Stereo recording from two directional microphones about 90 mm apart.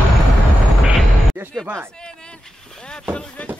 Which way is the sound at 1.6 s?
20° right (ahead or behind).